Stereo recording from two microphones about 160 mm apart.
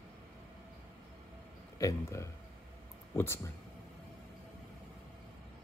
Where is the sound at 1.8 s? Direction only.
20° left (ahead or behind).